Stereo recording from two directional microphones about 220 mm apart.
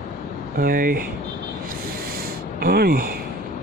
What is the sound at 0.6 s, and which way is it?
Speech, 40° right (ahead or behind).